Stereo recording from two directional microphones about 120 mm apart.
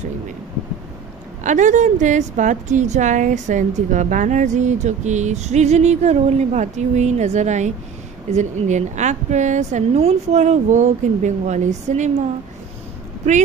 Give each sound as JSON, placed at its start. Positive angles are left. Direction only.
{"t": 1.4, "sound": "a woman's voice", "side_deg": -90}